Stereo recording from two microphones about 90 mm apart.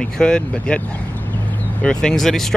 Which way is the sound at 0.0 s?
10° left (ahead or behind).